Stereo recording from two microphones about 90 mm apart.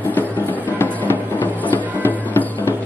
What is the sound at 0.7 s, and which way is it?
Music, 25° left (ahead or behind).